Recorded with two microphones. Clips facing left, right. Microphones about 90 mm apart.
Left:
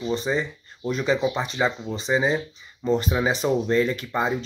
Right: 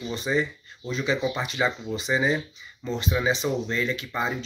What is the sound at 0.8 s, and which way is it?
Speech, 50° left (ahead or behind).